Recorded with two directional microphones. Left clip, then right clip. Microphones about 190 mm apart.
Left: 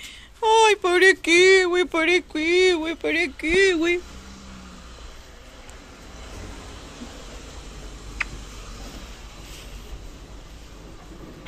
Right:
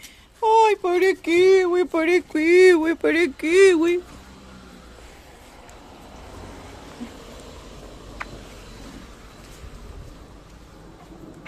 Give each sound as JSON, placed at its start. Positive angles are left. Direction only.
{"t": 0.4, "sound": "speech", "side_deg": -15}
{"t": 2.3, "sound": "speech", "side_deg": -45}